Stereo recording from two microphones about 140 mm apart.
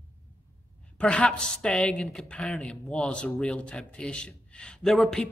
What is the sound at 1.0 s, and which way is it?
A woman's voice, 5° left (ahead or behind).